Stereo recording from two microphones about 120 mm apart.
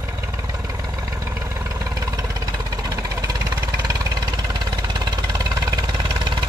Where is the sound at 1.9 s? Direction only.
30° right (ahead or behind).